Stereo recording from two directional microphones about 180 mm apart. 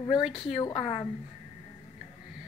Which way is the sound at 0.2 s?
Centre (ahead or behind).